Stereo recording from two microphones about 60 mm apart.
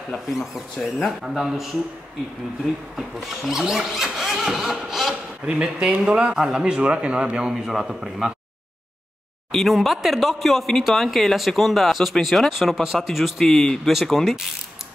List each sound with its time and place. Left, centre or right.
0.7 s speech: centre
3.0 s a man's voice: centre
9.5 s speech: centre